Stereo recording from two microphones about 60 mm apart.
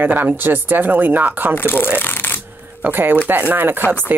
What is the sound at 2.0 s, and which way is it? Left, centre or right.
Shuffling cards, left.